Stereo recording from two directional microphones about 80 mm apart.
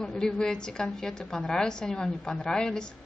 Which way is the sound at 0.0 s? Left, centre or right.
Centre.